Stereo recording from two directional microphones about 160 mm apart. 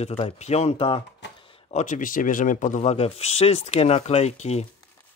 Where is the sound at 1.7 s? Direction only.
50° left (ahead or behind).